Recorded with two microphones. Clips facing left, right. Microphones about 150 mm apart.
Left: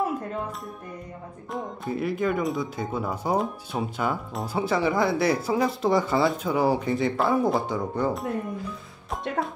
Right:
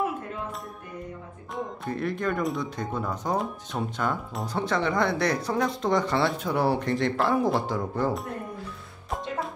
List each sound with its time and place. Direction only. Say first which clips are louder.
1.5 s speech: left 2 dB; 5° left (ahead or behind)